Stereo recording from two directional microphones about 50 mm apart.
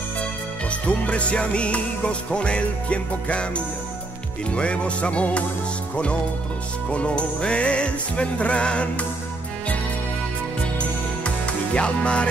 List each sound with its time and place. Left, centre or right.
0.2 s music: left
6.9 s music: left
10.8 s music: left